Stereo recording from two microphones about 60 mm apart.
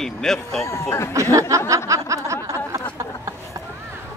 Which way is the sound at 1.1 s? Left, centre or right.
Right.